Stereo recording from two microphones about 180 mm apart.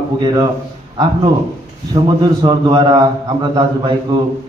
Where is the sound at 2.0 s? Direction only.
25° right (ahead or behind).